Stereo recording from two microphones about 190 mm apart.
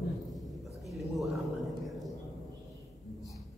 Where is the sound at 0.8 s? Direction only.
Centre (ahead or behind).